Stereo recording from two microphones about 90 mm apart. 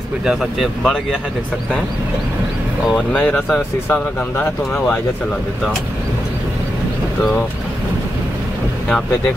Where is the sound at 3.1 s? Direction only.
10° left (ahead or behind).